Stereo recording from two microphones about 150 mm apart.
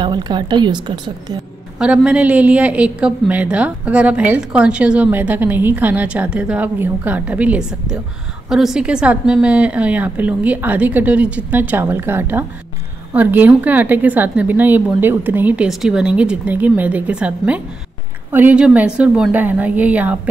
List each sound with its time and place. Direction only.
0.0 s a woman's voice: 30° right (ahead or behind)
1.8 s a woman's voice: 5° right (ahead or behind)